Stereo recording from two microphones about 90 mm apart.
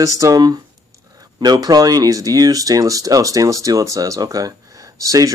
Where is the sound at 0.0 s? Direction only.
40° right (ahead or behind).